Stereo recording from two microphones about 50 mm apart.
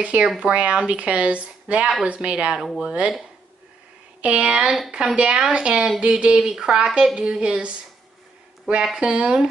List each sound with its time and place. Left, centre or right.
0.0 s speech: right
4.2 s speech: right
8.9 s speech: centre